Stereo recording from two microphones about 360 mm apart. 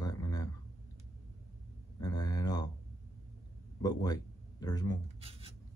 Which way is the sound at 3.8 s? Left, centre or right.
Centre.